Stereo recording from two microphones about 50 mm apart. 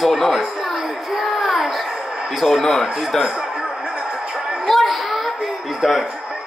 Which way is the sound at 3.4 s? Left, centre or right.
Right.